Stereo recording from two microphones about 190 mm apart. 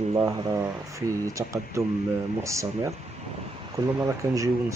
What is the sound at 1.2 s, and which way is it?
Speech, 15° right (ahead or behind).